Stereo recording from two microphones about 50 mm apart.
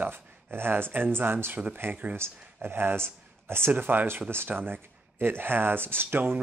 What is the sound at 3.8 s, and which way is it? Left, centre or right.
Speech, right.